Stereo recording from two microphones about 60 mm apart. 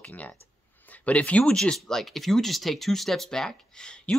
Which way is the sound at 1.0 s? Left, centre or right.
Left.